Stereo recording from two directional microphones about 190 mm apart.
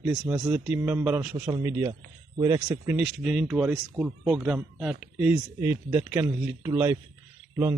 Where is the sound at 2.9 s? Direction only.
5° right (ahead or behind).